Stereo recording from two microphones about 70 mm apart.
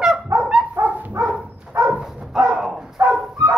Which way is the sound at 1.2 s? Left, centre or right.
Right.